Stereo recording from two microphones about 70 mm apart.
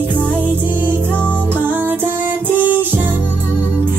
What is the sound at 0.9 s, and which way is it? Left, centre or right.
Music, left.